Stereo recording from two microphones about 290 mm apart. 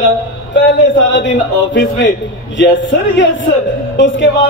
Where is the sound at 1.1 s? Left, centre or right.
Left.